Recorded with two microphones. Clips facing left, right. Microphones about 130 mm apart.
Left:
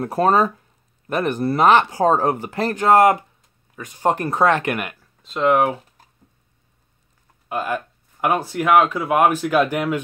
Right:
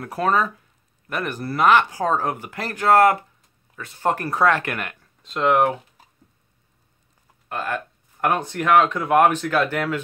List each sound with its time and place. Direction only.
0.0 s speech: 30° left (ahead or behind)
5.2 s speech: centre (ahead or behind)
7.4 s speech: 10° left (ahead or behind)